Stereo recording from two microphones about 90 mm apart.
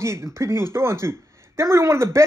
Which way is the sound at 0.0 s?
30° right (ahead or behind).